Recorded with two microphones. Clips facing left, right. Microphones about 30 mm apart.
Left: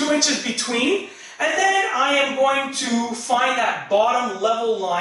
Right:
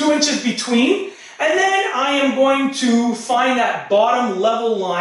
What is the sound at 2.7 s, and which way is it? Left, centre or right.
Speech, centre.